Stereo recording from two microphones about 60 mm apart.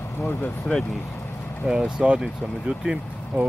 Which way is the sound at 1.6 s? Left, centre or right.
Centre.